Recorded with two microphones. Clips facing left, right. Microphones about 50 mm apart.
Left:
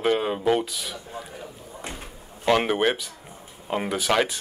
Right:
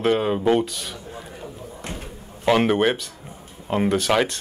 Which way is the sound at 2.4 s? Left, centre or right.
Centre.